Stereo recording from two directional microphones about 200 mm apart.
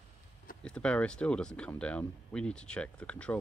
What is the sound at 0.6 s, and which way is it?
Speech, 5° left (ahead or behind).